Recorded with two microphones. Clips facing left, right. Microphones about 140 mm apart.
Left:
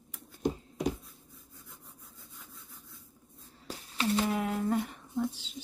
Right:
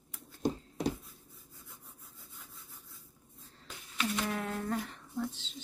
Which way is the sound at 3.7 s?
35° left (ahead or behind).